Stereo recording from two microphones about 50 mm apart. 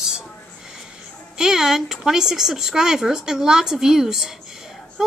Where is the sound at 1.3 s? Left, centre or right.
Centre.